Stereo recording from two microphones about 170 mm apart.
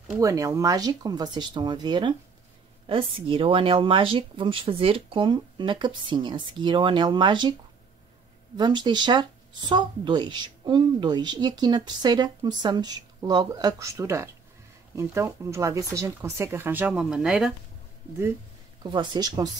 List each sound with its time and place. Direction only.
0.2 s speech: 20° right (ahead or behind)
8.5 s speech: 25° right (ahead or behind); by 17.6 s 5° right (ahead or behind)
18.8 s speech: 30° right (ahead or behind)